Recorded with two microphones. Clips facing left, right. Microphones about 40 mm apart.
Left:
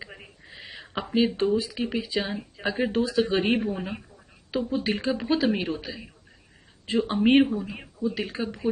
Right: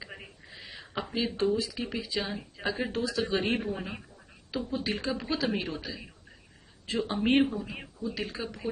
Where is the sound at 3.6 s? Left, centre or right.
Centre.